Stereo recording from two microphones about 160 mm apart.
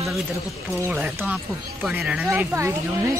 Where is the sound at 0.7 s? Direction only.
10° right (ahead or behind).